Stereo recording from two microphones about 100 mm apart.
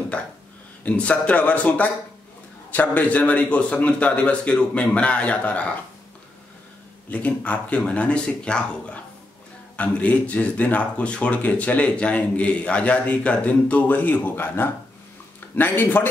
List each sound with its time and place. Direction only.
0.8 s speech: 15° left (ahead or behind)
7.1 s speech: 15° left (ahead or behind)